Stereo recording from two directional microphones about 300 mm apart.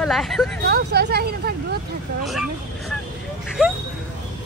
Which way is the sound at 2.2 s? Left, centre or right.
Centre.